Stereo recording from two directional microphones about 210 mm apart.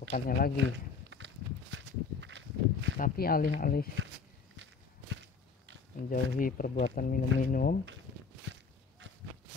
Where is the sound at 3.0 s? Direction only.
45° left (ahead or behind).